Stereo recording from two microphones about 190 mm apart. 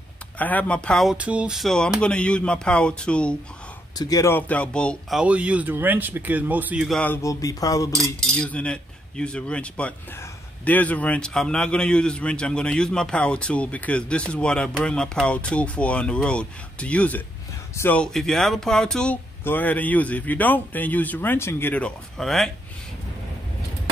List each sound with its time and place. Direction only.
0.4 s a man's voice: 10° left (ahead or behind)
4.0 s speech: 15° left (ahead or behind)
5.2 s speech: 5° right (ahead or behind)
7.2 s speech: 15° left (ahead or behind)
8.2 s a man's voice: 5° left (ahead or behind)